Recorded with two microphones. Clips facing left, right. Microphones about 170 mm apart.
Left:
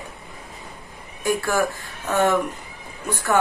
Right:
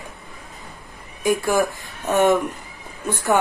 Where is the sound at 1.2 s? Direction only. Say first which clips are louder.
Right 2 dB; 20° right (ahead or behind).